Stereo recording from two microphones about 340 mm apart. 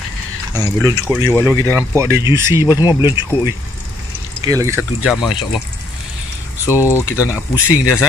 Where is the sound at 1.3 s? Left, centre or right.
Centre.